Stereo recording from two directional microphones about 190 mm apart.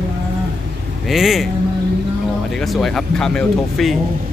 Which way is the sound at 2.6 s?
Centre (ahead or behind).